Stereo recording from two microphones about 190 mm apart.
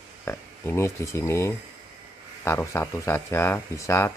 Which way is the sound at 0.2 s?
10° left (ahead or behind).